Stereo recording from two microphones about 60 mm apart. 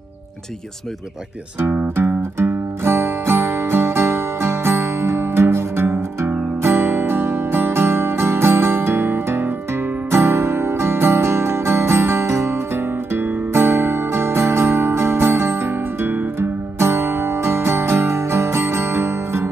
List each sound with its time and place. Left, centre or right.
2.0 s music: right